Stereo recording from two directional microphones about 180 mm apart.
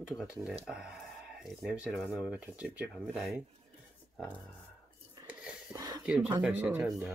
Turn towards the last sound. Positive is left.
turn(degrees=-5)  # may be behind; listen again after turning